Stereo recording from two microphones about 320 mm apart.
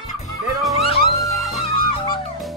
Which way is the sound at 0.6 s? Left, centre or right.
Centre.